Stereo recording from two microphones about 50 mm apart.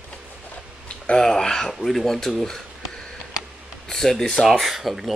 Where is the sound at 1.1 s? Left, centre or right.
Centre.